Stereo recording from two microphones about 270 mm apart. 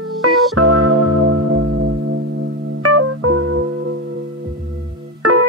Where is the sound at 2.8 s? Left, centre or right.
Right.